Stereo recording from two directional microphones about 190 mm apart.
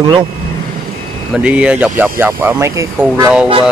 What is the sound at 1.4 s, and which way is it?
Speech, 5° right (ahead or behind).